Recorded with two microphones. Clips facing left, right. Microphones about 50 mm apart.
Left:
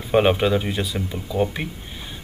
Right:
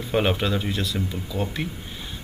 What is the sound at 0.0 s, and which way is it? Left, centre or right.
Speech, centre.